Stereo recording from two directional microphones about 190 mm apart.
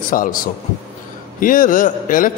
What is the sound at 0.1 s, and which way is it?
Speech, 45° left (ahead or behind).